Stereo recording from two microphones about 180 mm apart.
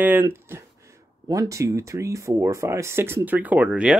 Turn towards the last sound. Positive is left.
turn(degrees=-5)  # may be behind; listen again after turning